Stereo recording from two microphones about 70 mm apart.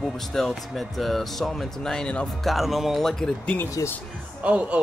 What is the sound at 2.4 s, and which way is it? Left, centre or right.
Speech, centre.